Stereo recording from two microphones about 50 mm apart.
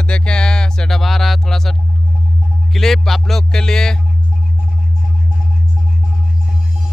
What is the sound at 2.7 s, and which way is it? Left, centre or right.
Speech, centre.